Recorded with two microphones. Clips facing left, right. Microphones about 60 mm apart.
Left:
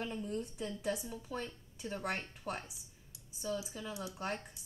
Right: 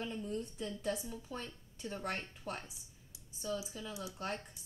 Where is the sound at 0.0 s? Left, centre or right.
Centre.